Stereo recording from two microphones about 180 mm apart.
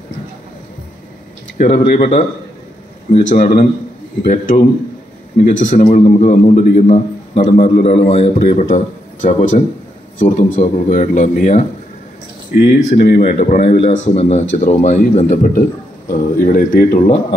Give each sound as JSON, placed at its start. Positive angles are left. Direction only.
{"t": 1.6, "sound": "a man's voice", "side_deg": 50}